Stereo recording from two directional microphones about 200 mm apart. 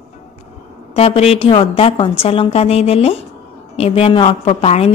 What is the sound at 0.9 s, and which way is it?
A woman's voice, 30° left (ahead or behind).